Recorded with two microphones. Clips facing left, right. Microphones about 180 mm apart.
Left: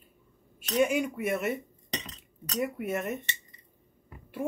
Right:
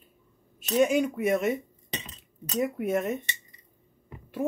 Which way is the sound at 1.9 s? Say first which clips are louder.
Left 1 dB; 5° right (ahead or behind).